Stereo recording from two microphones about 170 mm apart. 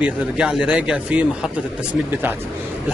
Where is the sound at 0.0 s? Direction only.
5° right (ahead or behind).